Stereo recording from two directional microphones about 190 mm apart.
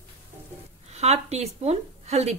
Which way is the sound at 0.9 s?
35° right (ahead or behind).